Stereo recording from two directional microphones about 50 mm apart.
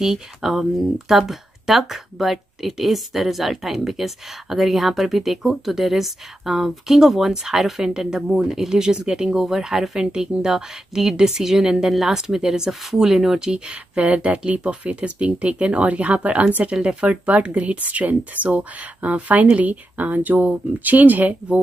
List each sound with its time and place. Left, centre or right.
0.0 s speech: centre; by 21.5 s right